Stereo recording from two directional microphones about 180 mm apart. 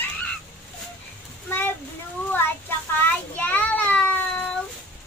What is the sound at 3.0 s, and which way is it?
Child singing, 10° left (ahead or behind).